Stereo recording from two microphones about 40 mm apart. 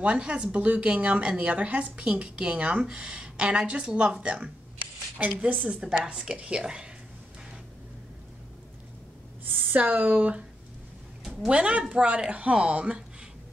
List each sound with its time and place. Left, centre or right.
0.0 s speech: right
5.4 s speech: right
5.7 s speech: right
9.8 s speech: right
11.4 s speech: right